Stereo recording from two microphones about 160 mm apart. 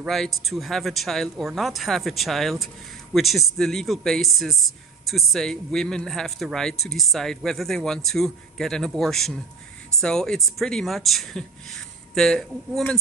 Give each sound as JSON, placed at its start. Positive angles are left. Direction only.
{"t": 0.0, "sound": "speech", "side_deg": 0}